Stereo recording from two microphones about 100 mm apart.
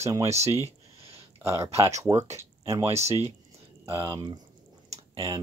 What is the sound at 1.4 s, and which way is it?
Speech, 30° right (ahead or behind).